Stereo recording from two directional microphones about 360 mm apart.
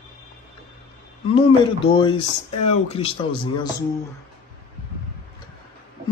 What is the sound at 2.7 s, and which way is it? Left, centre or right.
Speech, centre.